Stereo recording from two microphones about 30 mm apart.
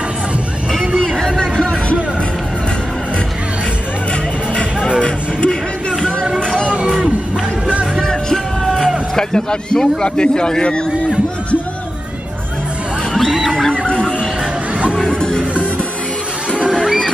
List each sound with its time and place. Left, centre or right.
0.7 s a sound: centre
1.1 s chatter: centre
5.0 s music: left
8.0 s music: centre
9.1 s a man's voice: left
13.7 s wild animals: left
15.1 s music: left
16.7 s music: centre